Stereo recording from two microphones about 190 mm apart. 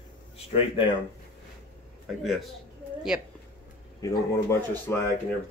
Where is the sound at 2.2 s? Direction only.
Centre (ahead or behind).